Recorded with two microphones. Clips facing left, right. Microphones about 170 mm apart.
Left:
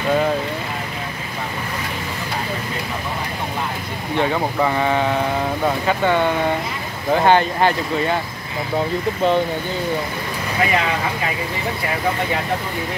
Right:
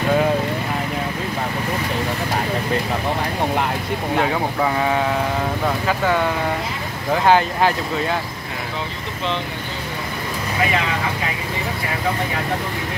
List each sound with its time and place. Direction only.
4.2 s speech: 5° right (ahead or behind)
8.7 s speech: 45° left (ahead or behind)